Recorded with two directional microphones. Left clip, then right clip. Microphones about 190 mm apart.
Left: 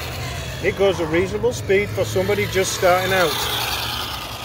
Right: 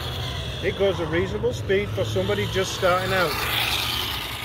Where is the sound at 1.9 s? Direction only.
15° left (ahead or behind).